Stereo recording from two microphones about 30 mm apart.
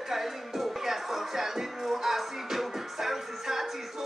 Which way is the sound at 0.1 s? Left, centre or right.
Centre.